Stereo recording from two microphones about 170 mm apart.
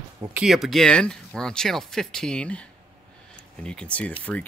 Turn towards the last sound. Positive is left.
turn(degrees=-5)  # may be behind; listen again after turning